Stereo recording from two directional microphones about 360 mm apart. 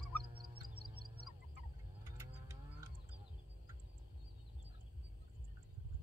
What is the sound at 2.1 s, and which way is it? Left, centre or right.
Cattle, centre.